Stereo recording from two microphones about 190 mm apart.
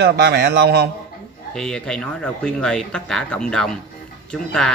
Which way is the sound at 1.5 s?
5° left (ahead or behind).